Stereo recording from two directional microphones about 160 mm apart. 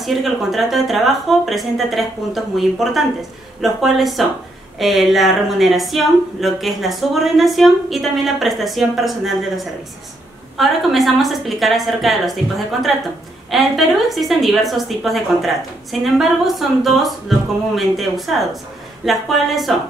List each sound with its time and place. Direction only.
0.0 s a woman's voice: centre (ahead or behind)